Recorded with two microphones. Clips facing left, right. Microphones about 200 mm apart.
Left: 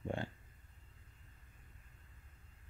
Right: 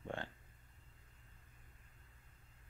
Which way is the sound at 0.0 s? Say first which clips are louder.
Left 4 dB; 10° left (ahead or behind).